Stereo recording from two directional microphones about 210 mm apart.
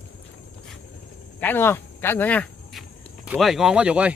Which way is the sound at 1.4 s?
10° left (ahead or behind).